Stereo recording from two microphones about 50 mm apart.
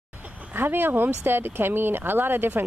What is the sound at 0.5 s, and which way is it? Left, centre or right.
Speech, right.